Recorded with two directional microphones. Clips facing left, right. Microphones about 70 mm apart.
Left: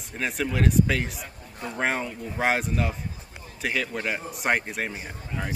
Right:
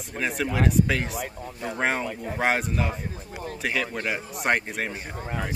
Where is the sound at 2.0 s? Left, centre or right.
Right.